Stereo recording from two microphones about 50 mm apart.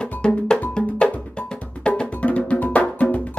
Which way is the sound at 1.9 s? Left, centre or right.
Left.